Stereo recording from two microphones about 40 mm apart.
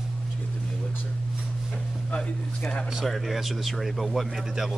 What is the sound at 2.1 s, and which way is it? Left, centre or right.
Speech, left.